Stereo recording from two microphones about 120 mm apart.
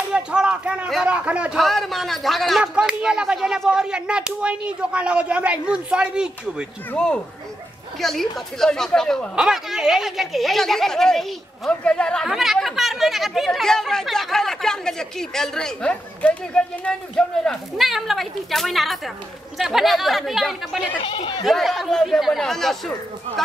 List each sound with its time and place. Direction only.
0.1 s a man's voice: 10° right (ahead or behind)
1.6 s a woman's voice: centre (ahead or behind)
6.9 s a woman's voice: 10° left (ahead or behind)
17.5 s a woman's voice: centre (ahead or behind)
21.0 s speech: 45° left (ahead or behind)
21.5 s a woman's voice: centre (ahead or behind)